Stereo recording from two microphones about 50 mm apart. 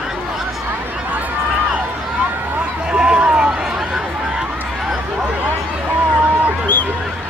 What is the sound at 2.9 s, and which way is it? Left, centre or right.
Run, centre.